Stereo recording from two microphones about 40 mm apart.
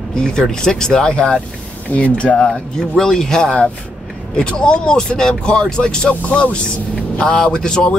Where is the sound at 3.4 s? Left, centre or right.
Left.